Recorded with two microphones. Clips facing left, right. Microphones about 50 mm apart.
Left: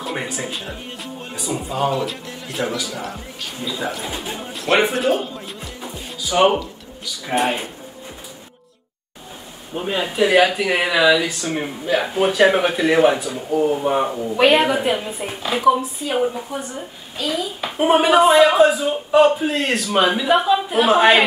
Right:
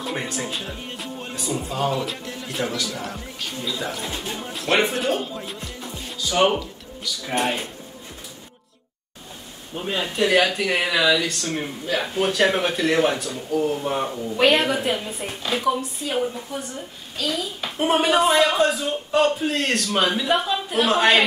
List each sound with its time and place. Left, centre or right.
0.0 s a man's voice: centre
5.8 s music: centre
7.2 s speech: centre
9.8 s speech: centre